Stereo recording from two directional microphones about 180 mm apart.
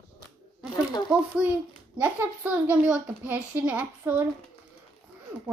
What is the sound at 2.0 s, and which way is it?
A child's voice, 10° right (ahead or behind).